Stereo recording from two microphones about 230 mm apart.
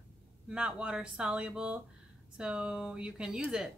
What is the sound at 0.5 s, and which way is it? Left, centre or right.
Speech, centre.